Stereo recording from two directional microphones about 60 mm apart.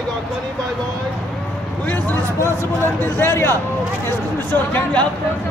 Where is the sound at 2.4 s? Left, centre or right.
Left.